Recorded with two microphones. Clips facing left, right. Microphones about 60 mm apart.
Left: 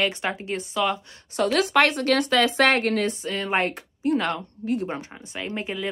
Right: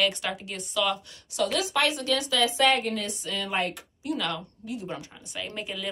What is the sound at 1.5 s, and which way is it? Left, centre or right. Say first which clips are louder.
Speech: left 9 dB; left.